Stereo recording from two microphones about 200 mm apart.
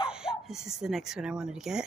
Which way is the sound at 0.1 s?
5° right (ahead or behind).